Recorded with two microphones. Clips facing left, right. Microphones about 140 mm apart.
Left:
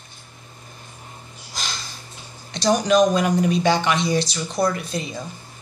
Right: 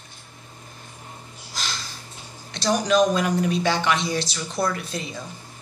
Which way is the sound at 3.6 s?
15° left (ahead or behind).